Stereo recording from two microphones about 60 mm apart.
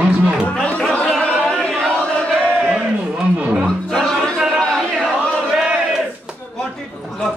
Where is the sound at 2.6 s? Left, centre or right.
Centre.